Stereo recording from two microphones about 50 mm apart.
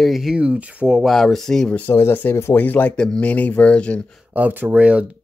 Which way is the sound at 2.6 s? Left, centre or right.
Left.